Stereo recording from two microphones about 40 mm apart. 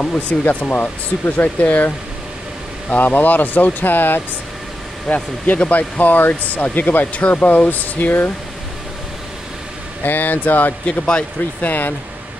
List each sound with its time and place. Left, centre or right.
0.0 s speech: left
5.1 s speech: left
10.0 s speech: left
10.9 s speech: left
11.6 s speech: left